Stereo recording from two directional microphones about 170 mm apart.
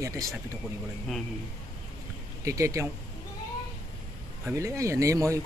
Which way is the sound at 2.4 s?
20° right (ahead or behind).